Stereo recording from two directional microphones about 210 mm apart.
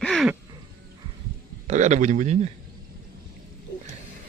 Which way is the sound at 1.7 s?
35° right (ahead or behind).